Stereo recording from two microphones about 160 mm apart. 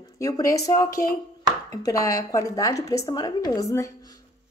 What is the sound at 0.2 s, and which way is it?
A woman's voice, 20° left (ahead or behind).